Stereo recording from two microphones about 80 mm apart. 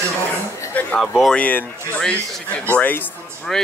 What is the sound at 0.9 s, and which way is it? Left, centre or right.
Speech, centre.